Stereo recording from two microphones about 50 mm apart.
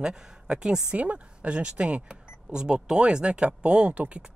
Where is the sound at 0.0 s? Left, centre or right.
Centre.